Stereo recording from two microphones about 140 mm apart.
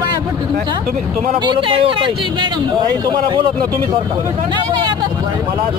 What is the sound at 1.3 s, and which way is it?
Speech, 35° right (ahead or behind).